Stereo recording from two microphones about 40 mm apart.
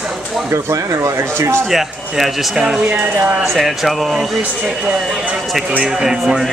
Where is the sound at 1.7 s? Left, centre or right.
Centre.